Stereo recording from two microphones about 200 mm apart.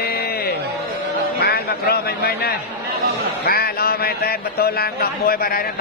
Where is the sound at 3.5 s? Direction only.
50° left (ahead or behind).